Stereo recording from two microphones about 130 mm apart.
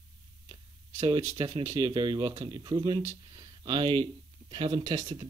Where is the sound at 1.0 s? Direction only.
35° right (ahead or behind).